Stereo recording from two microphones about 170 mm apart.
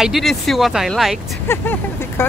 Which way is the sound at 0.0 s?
Centre (ahead or behind).